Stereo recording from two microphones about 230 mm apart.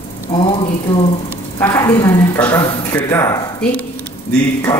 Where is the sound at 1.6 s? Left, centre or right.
Centre.